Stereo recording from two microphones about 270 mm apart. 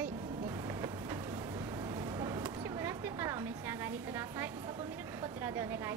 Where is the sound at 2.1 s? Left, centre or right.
Centre.